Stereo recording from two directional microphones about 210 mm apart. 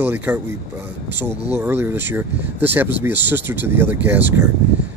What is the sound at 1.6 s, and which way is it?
Speech, 10° right (ahead or behind).